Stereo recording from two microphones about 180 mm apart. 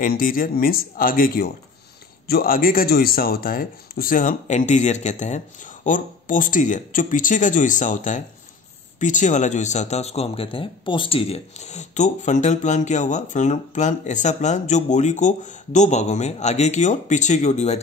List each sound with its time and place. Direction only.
0.0 s speech: 50° left (ahead or behind)